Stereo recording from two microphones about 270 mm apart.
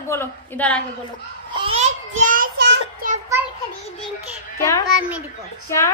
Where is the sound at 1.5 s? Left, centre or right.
Right.